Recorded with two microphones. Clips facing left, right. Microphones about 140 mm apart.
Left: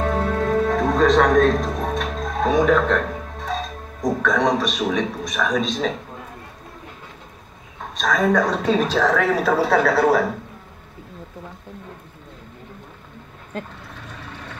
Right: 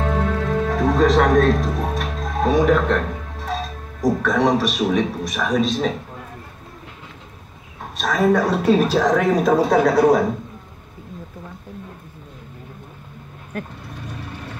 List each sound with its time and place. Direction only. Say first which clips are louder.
0.7 s speech: right 2 dB; centre (ahead or behind)
8.0 s a woman's voice: right 1 dB; 5° right (ahead or behind)
14.0 s vehicle: right 4 dB; 10° right (ahead or behind)